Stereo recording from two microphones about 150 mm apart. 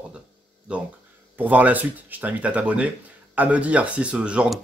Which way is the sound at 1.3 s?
10° right (ahead or behind).